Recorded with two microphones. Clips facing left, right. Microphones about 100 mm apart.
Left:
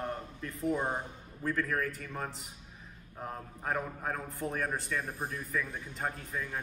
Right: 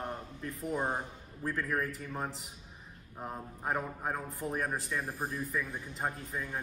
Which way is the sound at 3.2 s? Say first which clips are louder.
Even; 10° right (ahead or behind).